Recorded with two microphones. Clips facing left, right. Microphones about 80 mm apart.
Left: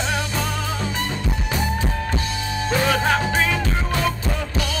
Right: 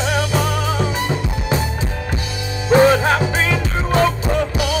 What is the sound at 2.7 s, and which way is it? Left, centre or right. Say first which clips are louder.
Music: right 8 dB; right.